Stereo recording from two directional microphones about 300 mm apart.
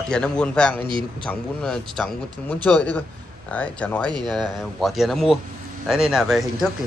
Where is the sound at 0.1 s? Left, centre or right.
Centre.